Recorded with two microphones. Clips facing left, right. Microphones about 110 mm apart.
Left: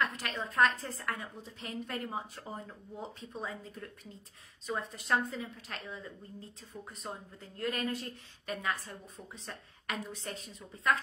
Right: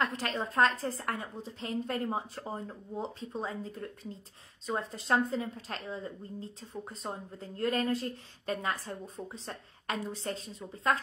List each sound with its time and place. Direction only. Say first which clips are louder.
0.0 s a woman's voice: right 3 dB; 30° right (ahead or behind)